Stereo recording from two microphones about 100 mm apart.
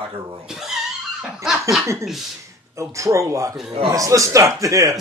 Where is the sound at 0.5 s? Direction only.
5° right (ahead or behind).